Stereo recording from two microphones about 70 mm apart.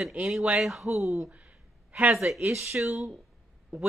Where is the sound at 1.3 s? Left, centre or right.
Centre.